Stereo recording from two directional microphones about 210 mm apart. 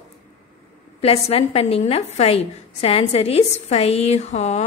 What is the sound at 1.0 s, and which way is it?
A woman's voice, 30° left (ahead or behind).